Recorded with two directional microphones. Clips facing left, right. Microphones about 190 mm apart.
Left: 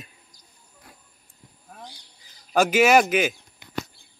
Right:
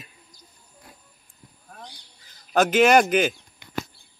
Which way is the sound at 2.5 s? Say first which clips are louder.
Right 1 dB; 10° left (ahead or behind).